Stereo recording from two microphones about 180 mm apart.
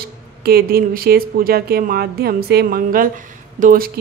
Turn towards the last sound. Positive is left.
turn(degrees=-50)  # may be behind; listen again after turning